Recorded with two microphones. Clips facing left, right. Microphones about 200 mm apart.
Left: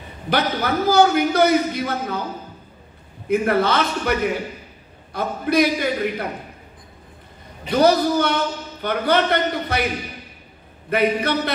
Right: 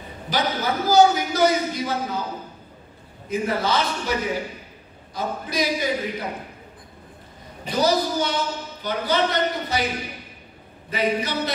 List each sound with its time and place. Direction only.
0.3 s a man's voice: 60° left (ahead or behind)
3.3 s a man's voice: 60° left (ahead or behind)
7.7 s a man's voice: 60° left (ahead or behind)
10.9 s a man's voice: 60° left (ahead or behind)